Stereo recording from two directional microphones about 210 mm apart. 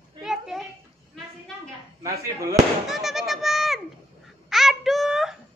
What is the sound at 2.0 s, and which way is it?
Speech, 15° right (ahead or behind).